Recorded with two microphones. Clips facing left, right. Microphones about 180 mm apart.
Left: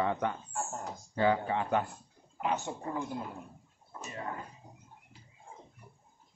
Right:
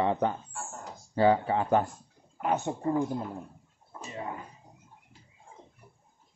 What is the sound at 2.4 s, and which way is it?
Speech, 50° right (ahead or behind).